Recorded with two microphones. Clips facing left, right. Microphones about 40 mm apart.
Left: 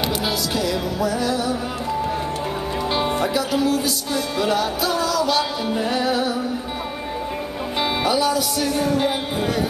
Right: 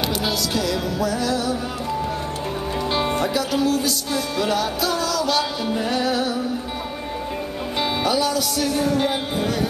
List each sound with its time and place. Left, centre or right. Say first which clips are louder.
0.6 s music: left 1 dB; centre
2.9 s music: even; centre
7.8 s music: left 1 dB; centre